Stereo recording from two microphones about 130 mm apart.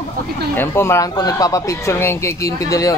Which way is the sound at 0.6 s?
20° left (ahead or behind).